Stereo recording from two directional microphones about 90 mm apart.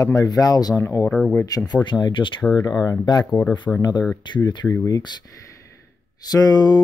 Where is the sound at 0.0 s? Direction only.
40° left (ahead or behind).